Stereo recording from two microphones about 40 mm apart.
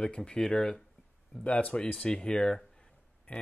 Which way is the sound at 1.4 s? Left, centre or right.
Left.